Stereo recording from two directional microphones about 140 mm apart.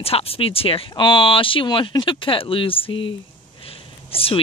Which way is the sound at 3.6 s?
40° left (ahead or behind).